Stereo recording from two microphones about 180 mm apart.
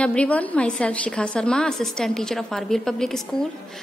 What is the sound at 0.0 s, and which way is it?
A woman's voice, 5° left (ahead or behind).